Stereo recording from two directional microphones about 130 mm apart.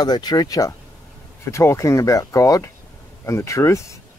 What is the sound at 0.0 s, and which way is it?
Speech, 30° left (ahead or behind).